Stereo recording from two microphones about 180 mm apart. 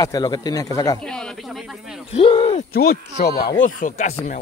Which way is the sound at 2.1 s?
35° left (ahead or behind).